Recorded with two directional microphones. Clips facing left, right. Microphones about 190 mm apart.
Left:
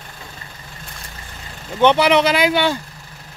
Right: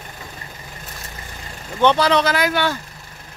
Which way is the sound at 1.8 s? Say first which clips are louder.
Left 2 dB; 20° left (ahead or behind).